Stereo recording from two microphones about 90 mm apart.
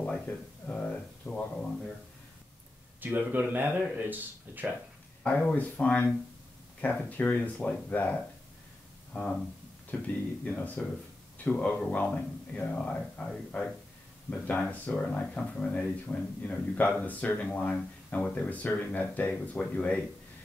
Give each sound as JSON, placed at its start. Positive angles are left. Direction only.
{"t": 0.0, "sound": "speech", "side_deg": 15}
{"t": 3.0, "sound": "speech", "side_deg": -20}
{"t": 5.2, "sound": "speech", "side_deg": 15}
{"t": 10.0, "sound": "speech", "side_deg": 15}